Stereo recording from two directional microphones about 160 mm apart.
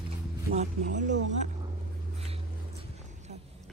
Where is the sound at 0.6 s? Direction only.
50° right (ahead or behind).